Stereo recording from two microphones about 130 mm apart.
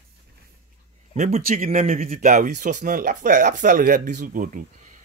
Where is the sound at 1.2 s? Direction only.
80° right.